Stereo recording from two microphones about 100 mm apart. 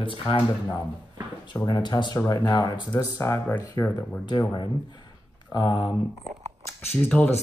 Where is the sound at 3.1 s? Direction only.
25° left (ahead or behind).